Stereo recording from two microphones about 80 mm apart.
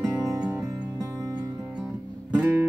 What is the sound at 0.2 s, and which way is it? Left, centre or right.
Music, right.